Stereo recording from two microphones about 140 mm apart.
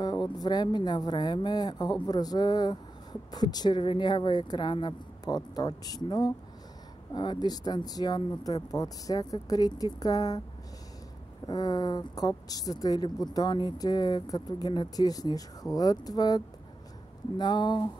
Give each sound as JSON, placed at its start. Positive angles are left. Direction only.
{"t": 0.0, "sound": "speech", "side_deg": 30}
{"t": 11.4, "sound": "speech", "side_deg": 25}